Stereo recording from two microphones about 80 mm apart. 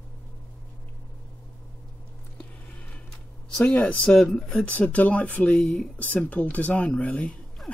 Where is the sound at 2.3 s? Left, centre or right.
Centre.